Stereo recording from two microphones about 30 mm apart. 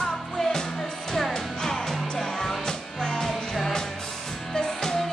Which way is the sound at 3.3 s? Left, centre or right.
Centre.